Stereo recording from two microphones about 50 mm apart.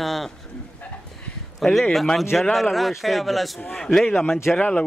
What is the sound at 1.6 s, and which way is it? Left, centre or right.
A man's voice, centre.